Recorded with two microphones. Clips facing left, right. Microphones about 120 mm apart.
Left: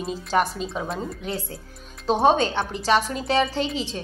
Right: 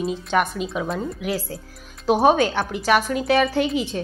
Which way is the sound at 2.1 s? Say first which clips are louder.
Right 2 dB; 25° left (ahead or behind).